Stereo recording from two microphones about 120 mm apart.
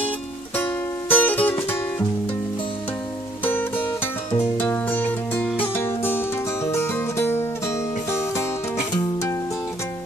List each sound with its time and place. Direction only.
0.6 s music: 15° left (ahead or behind)
3.4 s music: 15° left (ahead or behind)